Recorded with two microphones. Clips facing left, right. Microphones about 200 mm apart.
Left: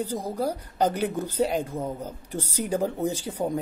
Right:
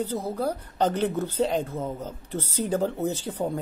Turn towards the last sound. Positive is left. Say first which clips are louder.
# left 1 dB
turn(degrees=10)  # may be behind; listen again after turning